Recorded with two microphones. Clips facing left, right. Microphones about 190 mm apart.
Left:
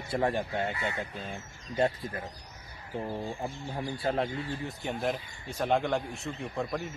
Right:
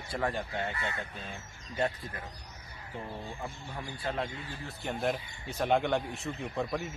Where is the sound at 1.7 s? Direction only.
25° left (ahead or behind).